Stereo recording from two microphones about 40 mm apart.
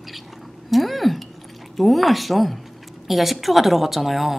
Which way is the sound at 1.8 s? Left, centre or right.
Centre.